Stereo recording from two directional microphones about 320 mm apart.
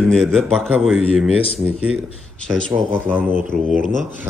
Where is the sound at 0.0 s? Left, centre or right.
Centre.